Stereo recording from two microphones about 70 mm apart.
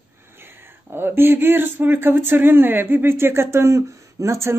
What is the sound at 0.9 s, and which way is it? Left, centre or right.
Speech, right.